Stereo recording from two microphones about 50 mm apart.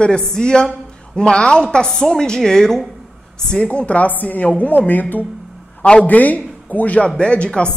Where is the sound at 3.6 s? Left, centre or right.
Left.